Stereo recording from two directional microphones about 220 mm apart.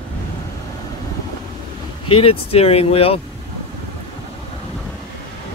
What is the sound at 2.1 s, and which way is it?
Speech, 25° left (ahead or behind).